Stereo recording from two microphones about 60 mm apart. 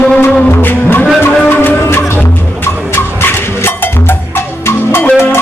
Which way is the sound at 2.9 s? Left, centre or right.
Left.